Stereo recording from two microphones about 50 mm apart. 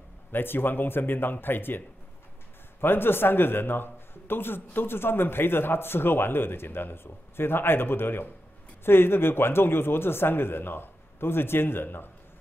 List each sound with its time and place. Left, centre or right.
0.3 s a man's voice: left
2.8 s a man's voice: left